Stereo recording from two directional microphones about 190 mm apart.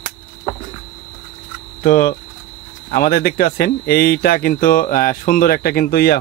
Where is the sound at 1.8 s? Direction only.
50° left (ahead or behind).